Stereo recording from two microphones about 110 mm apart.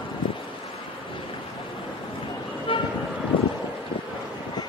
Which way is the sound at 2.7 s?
50° left (ahead or behind).